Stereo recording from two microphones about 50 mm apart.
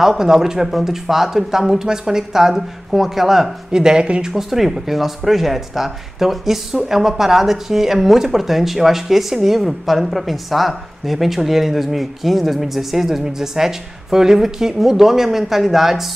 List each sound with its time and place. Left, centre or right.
0.0 s speech: centre
3.7 s speech: centre
4.3 s speech: centre